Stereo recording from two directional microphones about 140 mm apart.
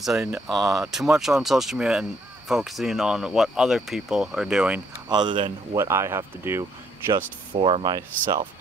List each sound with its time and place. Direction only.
0.0 s speech: 5° right (ahead or behind)
5.0 s speech: 30° right (ahead or behind)
5.8 s speech: 20° right (ahead or behind)
7.5 s speech: 40° right (ahead or behind)
7.9 s speech: 25° right (ahead or behind)